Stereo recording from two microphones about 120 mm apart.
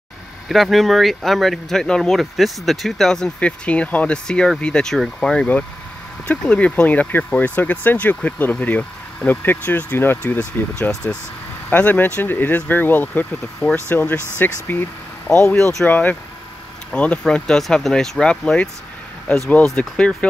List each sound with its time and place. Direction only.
0.5 s speech: centre (ahead or behind)